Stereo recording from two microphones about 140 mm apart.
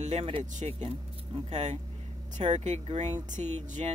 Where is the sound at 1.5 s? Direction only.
55° right (ahead or behind).